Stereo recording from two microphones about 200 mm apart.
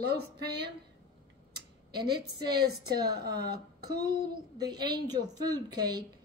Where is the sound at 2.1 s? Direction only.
50° right (ahead or behind).